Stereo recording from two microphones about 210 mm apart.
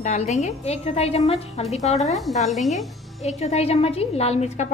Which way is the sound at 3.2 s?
30° left (ahead or behind).